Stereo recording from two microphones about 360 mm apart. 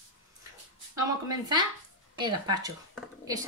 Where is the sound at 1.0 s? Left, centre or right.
Centre.